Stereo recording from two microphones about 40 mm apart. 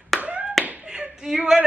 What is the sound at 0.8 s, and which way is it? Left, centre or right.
Clapping, centre.